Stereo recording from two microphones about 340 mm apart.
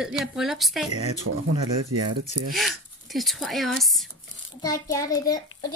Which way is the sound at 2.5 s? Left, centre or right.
Centre.